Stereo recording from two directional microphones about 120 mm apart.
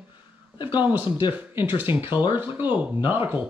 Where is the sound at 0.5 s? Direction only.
40° left (ahead or behind).